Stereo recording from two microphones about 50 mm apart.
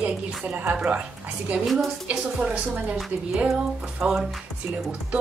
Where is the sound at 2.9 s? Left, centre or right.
Centre.